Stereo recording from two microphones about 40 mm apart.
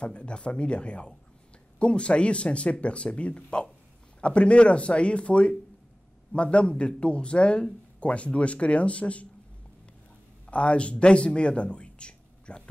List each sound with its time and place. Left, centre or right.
0.0 s speech: left
10.4 s a man's voice: left